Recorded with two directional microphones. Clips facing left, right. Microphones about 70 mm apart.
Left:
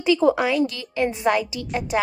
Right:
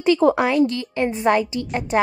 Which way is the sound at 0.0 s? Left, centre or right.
Right.